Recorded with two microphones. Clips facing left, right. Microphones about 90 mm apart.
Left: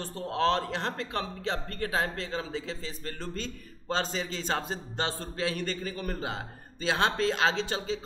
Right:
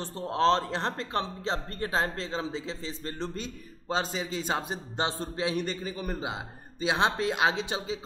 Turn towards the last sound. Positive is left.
turn(degrees=-15)  # may be behind; listen again after turning